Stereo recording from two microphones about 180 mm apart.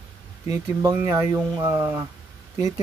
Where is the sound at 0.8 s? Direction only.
15° right (ahead or behind).